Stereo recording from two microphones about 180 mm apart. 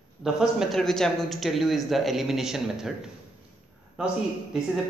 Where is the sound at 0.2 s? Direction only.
Centre (ahead or behind).